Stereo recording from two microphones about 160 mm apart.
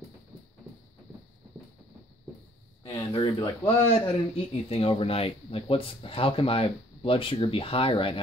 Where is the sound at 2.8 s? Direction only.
35° left (ahead or behind).